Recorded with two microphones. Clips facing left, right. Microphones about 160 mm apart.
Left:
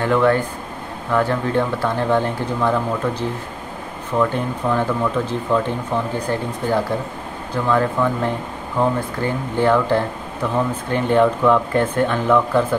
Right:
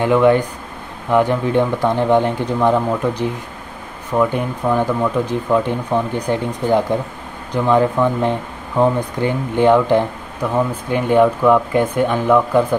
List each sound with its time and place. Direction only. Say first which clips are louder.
0.0 s speech: right 4 dB; 15° right (ahead or behind)